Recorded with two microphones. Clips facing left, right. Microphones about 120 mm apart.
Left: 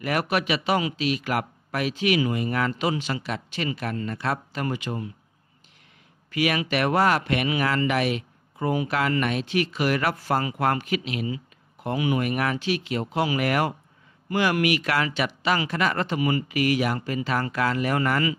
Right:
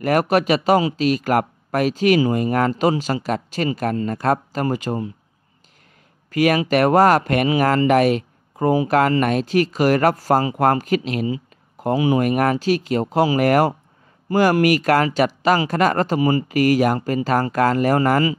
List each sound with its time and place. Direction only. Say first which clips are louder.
0.0 s a man's voice: right 8 dB; 45° right (ahead or behind)
6.3 s a man's voice: right 7 dB; 45° right (ahead or behind)